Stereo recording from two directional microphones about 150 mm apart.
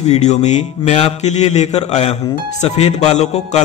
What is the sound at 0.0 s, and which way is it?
A man's voice, 50° left (ahead or behind).